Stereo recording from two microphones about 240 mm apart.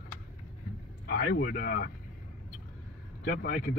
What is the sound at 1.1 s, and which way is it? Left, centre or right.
Speech, left.